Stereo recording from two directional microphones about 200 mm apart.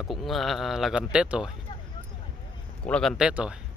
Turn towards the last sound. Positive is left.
turn(degrees=-5)  # may be behind; listen again after turning